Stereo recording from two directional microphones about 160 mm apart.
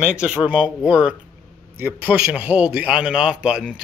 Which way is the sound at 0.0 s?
10° right (ahead or behind).